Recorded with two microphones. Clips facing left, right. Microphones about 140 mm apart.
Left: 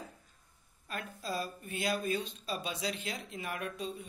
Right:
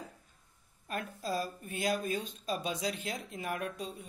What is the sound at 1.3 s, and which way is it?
Speech, 40° right (ahead or behind).